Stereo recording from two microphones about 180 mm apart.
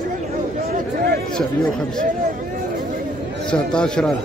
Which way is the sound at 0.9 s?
60° right (ahead or behind).